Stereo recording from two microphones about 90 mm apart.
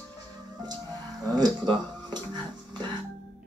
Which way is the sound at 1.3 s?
55° right (ahead or behind).